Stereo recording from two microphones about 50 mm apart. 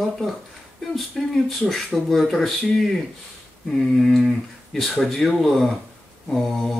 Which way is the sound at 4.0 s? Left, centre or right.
Centre.